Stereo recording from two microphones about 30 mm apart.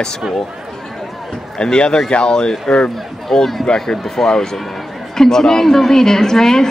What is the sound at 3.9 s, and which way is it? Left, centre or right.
A woman's voice, left.